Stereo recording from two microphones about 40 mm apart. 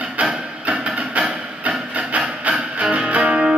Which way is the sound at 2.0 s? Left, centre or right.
Right.